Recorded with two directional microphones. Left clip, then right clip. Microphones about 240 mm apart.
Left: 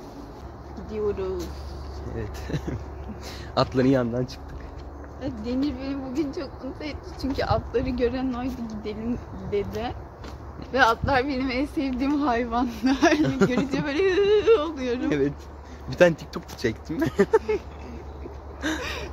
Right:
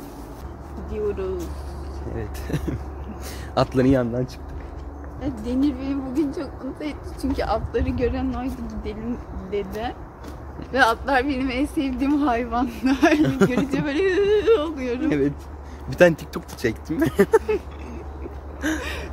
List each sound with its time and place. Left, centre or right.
0.9 s speech: centre
2.1 s a man's voice: centre
5.2 s speech: centre
13.2 s speech: centre
13.7 s a man's voice: centre
18.8 s gasp: centre